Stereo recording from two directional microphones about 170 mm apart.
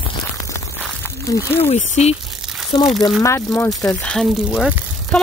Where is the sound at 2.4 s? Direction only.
Centre (ahead or behind).